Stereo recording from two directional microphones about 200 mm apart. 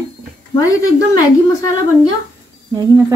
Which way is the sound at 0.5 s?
15° left (ahead or behind).